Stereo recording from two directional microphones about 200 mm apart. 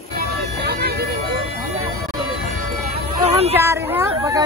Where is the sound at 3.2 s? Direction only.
30° right (ahead or behind).